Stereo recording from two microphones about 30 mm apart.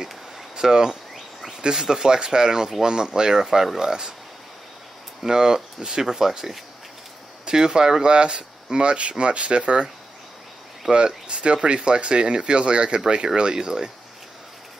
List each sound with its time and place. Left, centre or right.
0.6 s speech: centre
3.4 s speech: centre
5.2 s speech: right
10.9 s speech: right